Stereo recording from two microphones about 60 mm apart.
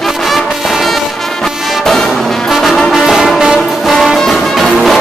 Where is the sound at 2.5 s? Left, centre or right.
Centre.